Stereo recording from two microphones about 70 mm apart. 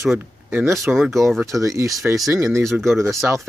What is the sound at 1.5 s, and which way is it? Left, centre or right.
Speech, right.